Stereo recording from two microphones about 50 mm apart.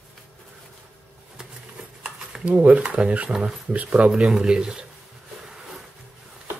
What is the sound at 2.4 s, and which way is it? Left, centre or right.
Speech, right.